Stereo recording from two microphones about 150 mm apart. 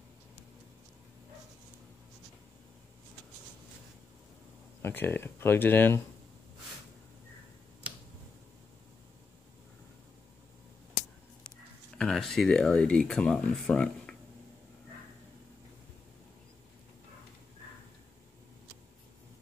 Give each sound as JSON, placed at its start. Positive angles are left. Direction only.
{"t": 4.8, "sound": "speech", "side_deg": 15}
{"t": 12.0, "sound": "speech", "side_deg": 5}